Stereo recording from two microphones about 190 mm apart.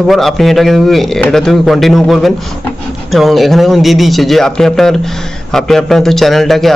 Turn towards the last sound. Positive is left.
turn(degrees=0)  # may be behind; listen again after turning